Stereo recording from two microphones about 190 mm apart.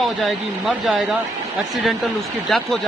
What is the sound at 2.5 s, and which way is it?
Speech, centre (ahead or behind).